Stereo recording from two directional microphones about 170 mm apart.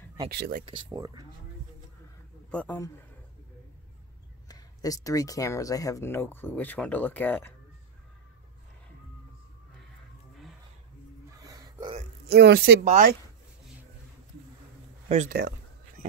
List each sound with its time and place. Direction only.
0.3 s speech: 75° right (ahead or behind)
0.7 s speech: 25° right (ahead or behind)
2.5 s speech: 10° left (ahead or behind)
4.5 s speech: 20° left (ahead or behind)
11.3 s hiccup: 20° right (ahead or behind)
12.3 s speech: 75° right (ahead or behind)
12.8 s speech: 45° right (ahead or behind)
15.0 s speech: 45° right (ahead or behind)